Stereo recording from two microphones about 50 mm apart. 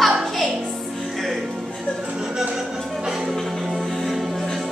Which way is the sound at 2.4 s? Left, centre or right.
Centre.